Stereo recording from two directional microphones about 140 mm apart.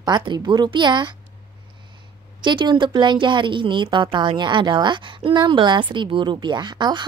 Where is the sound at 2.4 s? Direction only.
35° right (ahead or behind).